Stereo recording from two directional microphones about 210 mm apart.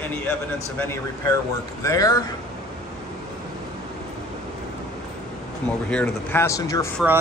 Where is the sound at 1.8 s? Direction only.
15° left (ahead or behind).